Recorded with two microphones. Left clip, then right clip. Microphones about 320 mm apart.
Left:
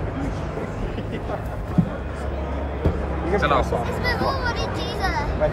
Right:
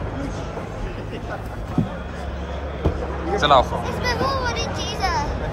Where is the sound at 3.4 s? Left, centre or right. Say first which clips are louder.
Right 5 dB; centre.